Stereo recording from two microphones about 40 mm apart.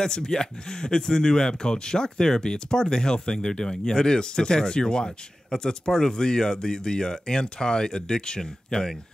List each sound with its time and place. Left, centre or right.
0.0 s speech: centre